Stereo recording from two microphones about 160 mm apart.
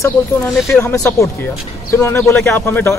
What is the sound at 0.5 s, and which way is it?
Speech, centre (ahead or behind).